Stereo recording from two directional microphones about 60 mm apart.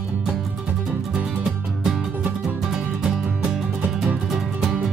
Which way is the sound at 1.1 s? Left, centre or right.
Centre.